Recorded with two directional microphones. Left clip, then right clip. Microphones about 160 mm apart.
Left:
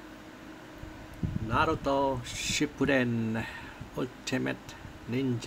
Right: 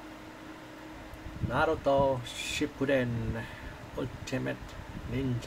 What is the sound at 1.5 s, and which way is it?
Speech, 35° left (ahead or behind).